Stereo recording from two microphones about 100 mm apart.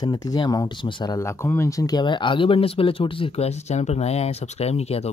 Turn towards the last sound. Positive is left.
turn(degrees=90)